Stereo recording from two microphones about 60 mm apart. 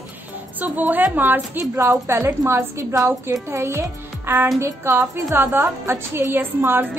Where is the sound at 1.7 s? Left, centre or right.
Right.